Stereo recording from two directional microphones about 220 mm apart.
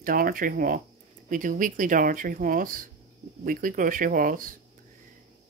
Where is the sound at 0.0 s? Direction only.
40° right (ahead or behind).